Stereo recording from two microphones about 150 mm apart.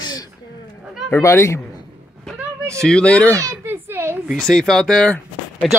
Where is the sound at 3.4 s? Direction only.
15° right (ahead or behind).